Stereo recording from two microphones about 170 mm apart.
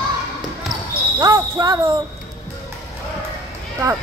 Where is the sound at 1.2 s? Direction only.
20° right (ahead or behind).